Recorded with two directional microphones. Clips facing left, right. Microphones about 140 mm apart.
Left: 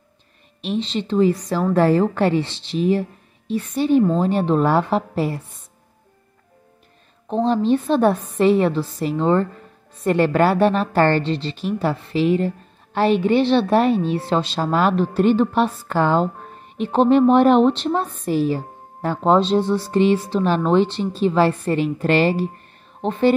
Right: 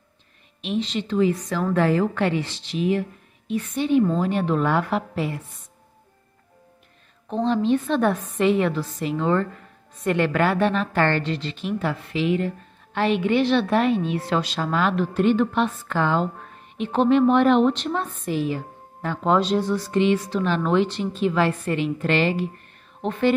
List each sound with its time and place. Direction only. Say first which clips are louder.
0.6 s a woman's voice: left 2 dB; 30° left (ahead or behind)
7.2 s a woman's voice: left 3 dB; 35° left (ahead or behind)